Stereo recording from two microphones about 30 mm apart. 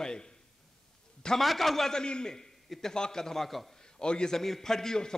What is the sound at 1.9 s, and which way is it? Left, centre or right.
Speech, left.